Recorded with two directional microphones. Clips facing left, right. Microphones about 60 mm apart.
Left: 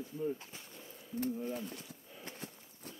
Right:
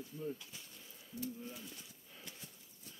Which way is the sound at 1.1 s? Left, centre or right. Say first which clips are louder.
Left 8 dB; left.